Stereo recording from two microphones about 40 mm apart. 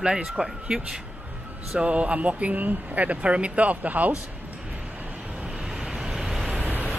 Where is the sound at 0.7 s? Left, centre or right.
Right.